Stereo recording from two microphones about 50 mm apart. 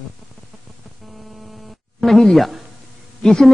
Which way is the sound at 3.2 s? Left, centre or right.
Centre.